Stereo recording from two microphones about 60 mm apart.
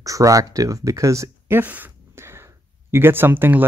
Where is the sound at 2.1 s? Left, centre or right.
Right.